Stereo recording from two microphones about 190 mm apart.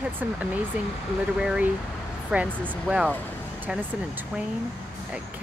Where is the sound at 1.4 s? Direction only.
5° right (ahead or behind).